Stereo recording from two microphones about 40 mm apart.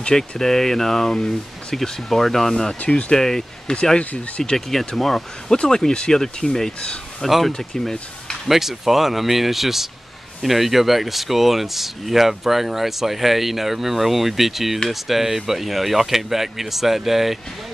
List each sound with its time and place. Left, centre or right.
0.4 s speech: centre
4.0 s speech: left
4.6 s speech: centre
5.7 s speech: centre
7.2 s speech: centre
7.5 s speech: centre
8.5 s speech: centre